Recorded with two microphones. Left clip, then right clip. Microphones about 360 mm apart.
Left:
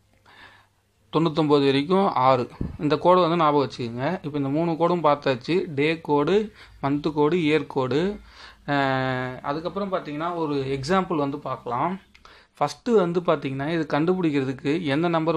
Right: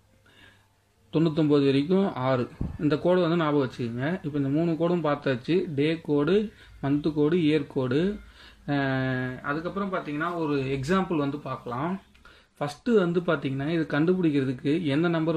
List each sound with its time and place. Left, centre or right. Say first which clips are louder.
1.1 s a man's voice: left 3 dB; centre
12.5 s speech: left 4 dB; centre